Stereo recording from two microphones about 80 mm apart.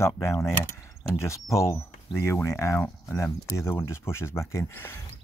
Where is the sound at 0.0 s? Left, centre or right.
Left.